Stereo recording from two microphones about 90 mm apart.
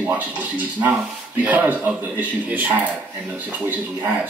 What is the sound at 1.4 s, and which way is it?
Speech, 20° right (ahead or behind).